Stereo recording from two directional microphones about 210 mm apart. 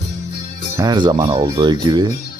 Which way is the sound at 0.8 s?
20° right (ahead or behind).